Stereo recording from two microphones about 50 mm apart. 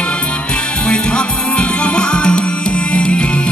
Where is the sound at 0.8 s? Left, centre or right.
Left.